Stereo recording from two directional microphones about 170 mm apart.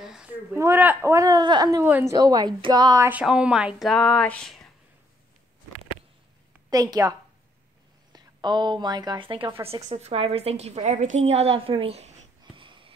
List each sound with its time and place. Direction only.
0.0 s speech: 5° right (ahead or behind); by 1.9 s 20° right (ahead or behind)
1.9 s speech: 10° right (ahead or behind)
2.1 s speech: 20° right (ahead or behind); by 4.6 s 5° left (ahead or behind)
6.7 s a woman's voice: 20° right (ahead or behind); by 11.1 s 40° right (ahead or behind)
11.1 s a sound: 40° right (ahead or behind)